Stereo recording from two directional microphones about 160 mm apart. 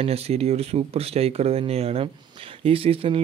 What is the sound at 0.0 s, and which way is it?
Speech, 40° right (ahead or behind).